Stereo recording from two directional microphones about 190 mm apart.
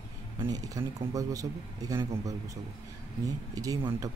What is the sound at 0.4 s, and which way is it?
Speech, 20° right (ahead or behind).